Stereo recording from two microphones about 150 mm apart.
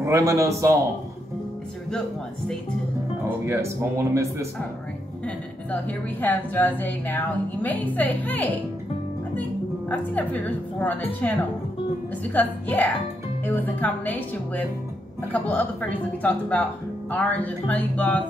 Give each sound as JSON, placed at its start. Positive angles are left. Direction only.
{"t": 0.0, "sound": "speech", "side_deg": -20}
{"t": 3.3, "sound": "speech", "side_deg": -15}
{"t": 5.2, "sound": "a woman's voice", "side_deg": 10}